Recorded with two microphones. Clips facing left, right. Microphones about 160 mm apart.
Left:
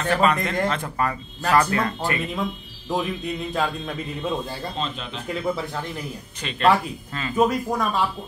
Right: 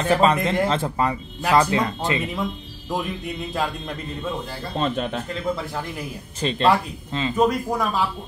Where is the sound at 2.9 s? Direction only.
Centre (ahead or behind).